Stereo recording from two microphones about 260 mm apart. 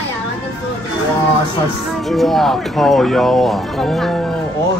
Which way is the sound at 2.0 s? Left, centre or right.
Centre.